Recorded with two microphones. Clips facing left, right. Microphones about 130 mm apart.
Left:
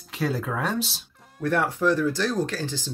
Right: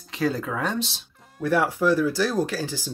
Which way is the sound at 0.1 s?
Centre (ahead or behind).